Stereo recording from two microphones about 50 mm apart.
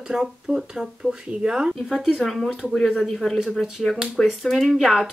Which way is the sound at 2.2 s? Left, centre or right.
Centre.